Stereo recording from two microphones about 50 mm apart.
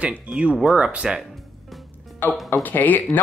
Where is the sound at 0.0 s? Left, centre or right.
Right.